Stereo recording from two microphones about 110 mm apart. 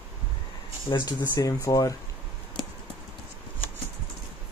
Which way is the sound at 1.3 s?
30° left (ahead or behind).